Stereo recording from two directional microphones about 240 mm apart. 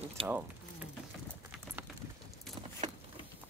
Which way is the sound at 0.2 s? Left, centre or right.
Right.